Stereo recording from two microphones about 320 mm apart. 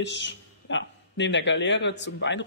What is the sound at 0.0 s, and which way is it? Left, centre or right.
A man's voice, left.